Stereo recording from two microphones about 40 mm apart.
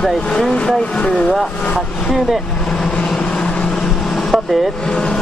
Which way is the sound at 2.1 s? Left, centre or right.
Centre.